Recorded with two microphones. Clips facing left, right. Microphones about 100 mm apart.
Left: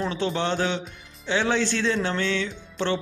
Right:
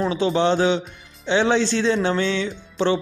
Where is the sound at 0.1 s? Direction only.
15° right (ahead or behind).